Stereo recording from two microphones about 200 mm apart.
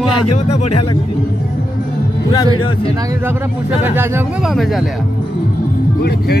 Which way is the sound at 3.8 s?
10° right (ahead or behind).